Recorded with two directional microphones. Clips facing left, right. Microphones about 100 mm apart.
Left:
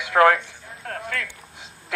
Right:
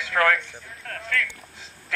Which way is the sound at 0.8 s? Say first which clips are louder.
Right 1 dB; 25° left (ahead or behind).